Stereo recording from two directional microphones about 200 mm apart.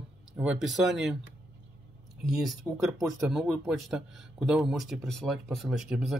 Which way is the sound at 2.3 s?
Centre (ahead or behind).